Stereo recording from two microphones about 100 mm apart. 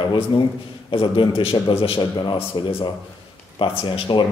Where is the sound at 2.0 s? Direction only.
50° left (ahead or behind).